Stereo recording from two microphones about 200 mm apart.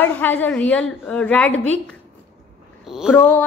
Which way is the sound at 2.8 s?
Centre (ahead or behind).